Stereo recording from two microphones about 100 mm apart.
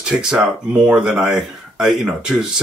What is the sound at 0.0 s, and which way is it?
Speech, 5° right (ahead or behind).